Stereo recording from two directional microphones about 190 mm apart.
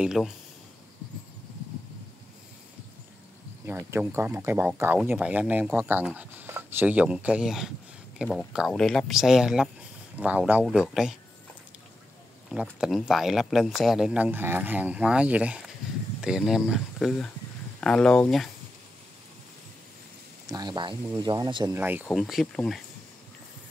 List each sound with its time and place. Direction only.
0.0 s speech: 5° right (ahead or behind)
3.6 s speech: 15° right (ahead or behind)
12.4 s speech: 5° right (ahead or behind)
20.4 s speech: 20° right (ahead or behind)
21.7 s speech: 10° right (ahead or behind)